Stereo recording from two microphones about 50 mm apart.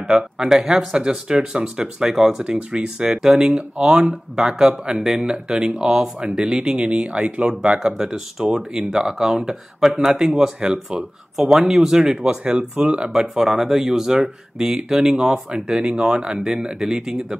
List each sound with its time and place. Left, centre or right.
0.0 s speech: centre
2.4 s speech: centre
13.1 s speech: centre